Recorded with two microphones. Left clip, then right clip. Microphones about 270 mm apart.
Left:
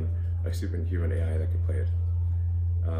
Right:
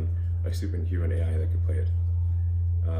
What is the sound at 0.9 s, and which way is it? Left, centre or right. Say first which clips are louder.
Speech: left 1 dB; centre.